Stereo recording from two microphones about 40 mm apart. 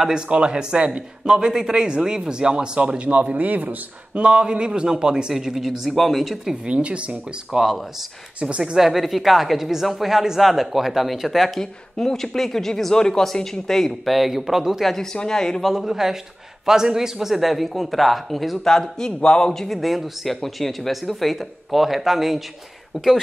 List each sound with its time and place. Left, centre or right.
0.1 s a man's voice: right
4.2 s a man's voice: right
5.3 s a woman's voice: centre
6.6 s a man's voice: right
7.5 s a woman's voice: centre
8.4 s a man's voice: right
8.7 s a man's voice: centre
14.1 s a man's voice: centre
15.1 s speech: centre
15.6 s a woman's voice: centre
18.6 s speech: centre
19.7 s a man's voice: centre